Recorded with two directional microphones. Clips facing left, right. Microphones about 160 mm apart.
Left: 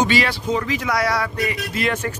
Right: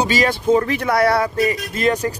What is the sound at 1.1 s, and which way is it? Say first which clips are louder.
Speech: right 5 dB; 40° right (ahead or behind).